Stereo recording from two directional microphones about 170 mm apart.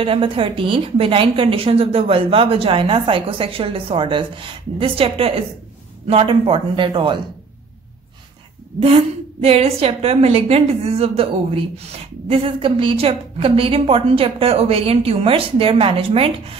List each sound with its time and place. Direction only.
0.0 s a woman's voice: 30° right (ahead or behind)
8.7 s a woman's voice: 35° right (ahead or behind)